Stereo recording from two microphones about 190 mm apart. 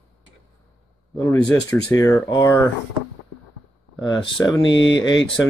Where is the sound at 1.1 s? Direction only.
10° left (ahead or behind).